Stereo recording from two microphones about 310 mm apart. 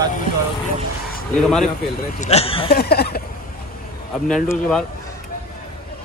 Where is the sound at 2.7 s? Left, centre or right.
Left.